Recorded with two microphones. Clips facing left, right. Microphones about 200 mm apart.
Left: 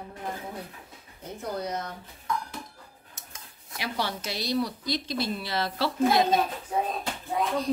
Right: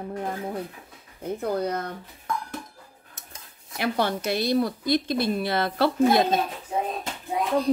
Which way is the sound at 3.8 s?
55° right (ahead or behind).